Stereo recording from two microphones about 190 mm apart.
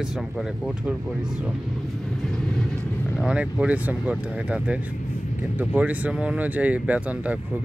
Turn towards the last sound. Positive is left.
turn(degrees=-10)  # may be behind; listen again after turning